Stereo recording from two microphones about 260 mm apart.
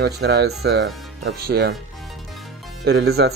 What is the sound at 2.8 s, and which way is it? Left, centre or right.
Speech, right.